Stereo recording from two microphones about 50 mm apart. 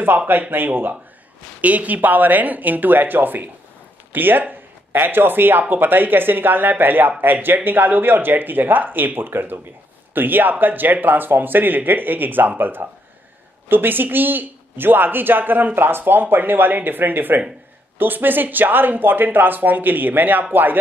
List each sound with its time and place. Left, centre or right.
0.3 s a man's voice: right
1.6 s a man's voice: right